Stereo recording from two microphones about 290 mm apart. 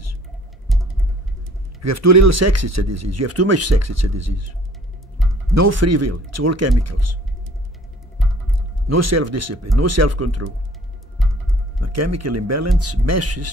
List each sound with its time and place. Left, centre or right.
0.7 s music: centre
1.8 s speech: right
5.8 s speech: right
8.8 s speech: right
11.1 s heart sounds: centre
11.8 s speech: right